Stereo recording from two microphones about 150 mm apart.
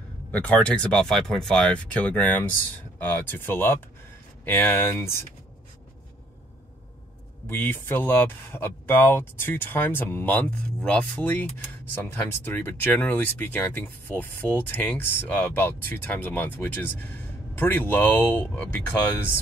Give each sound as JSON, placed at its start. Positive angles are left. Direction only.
{"t": 0.3, "sound": "speech", "side_deg": 10}
{"t": 7.4, "sound": "speech", "side_deg": 15}